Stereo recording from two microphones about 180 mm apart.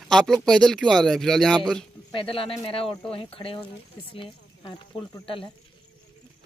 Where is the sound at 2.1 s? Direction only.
30° left (ahead or behind).